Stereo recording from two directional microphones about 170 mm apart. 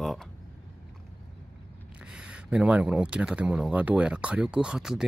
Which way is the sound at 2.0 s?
5° right (ahead or behind).